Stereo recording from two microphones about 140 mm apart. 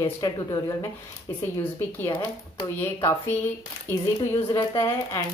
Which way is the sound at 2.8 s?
15° left (ahead or behind).